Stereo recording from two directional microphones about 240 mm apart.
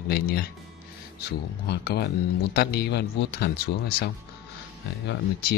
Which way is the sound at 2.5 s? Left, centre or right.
Left.